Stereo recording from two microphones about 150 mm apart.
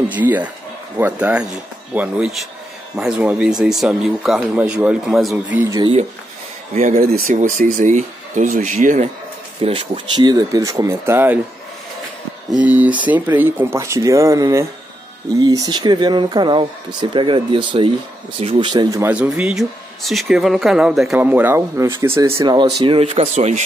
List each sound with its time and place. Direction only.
0.1 s speech: 10° right (ahead or behind)
6.7 s speech: 65° right (ahead or behind)
7.3 s speech: 60° right (ahead or behind)
9.6 s speech: 35° right (ahead or behind); by 11.3 s 15° right (ahead or behind)
12.4 s speech: 10° right (ahead or behind); by 18.9 s 35° right (ahead or behind)
18.9 s speech: 20° right (ahead or behind)
19.3 s speech: 5° right (ahead or behind); by 22.7 s 25° right (ahead or behind)
22.8 s speech: 40° right (ahead or behind)